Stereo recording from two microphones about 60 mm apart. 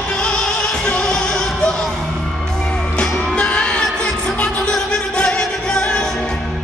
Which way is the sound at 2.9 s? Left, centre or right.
Centre.